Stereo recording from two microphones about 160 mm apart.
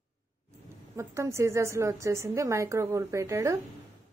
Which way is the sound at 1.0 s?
20° right (ahead or behind).